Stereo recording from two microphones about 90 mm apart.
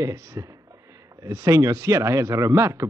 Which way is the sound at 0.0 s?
35° right (ahead or behind).